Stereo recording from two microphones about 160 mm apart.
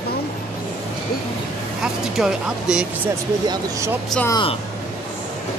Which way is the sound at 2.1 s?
5° right (ahead or behind).